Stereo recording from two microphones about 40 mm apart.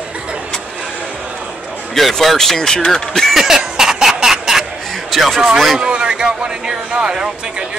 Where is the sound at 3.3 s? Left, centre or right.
Centre.